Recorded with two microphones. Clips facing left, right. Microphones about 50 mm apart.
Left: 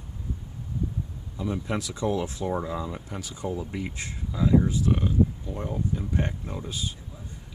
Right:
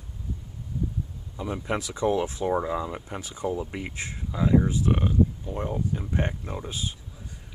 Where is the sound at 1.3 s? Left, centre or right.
Centre.